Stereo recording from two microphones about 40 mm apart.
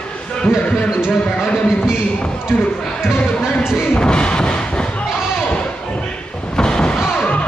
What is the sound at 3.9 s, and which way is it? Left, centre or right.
Thump, left.